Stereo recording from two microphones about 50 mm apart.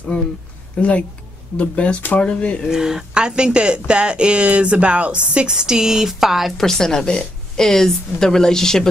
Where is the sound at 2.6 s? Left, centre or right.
Centre.